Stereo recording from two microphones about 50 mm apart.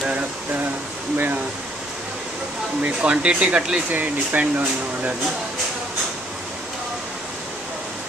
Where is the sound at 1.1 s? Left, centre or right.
Right.